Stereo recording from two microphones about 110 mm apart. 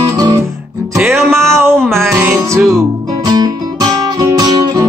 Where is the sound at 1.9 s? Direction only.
20° right (ahead or behind).